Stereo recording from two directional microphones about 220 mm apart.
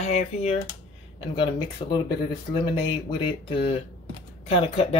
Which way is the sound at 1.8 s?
25° left (ahead or behind).